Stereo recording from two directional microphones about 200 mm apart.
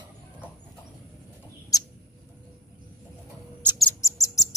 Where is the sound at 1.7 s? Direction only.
15° left (ahead or behind).